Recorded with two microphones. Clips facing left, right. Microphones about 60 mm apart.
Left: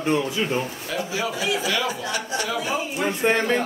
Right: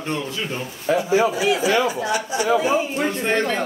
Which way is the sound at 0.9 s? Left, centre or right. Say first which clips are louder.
Right 10 dB; right.